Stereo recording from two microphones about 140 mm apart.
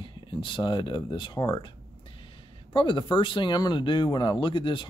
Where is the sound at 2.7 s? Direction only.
35° left (ahead or behind).